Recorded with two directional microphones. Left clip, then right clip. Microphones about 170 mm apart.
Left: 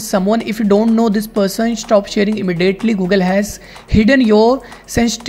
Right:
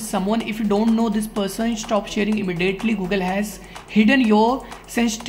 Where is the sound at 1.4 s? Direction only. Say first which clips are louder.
Left 9 dB; 35° left (ahead or behind).